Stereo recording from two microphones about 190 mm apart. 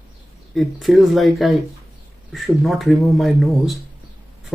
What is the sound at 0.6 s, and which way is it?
Speech, centre (ahead or behind).